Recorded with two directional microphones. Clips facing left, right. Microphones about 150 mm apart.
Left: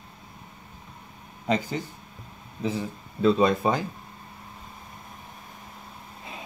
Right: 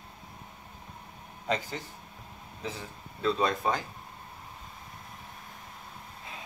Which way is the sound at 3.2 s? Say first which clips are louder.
Left 7 dB; 10° left (ahead or behind).